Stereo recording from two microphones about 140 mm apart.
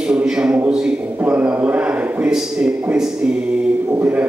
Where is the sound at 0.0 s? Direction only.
5° right (ahead or behind).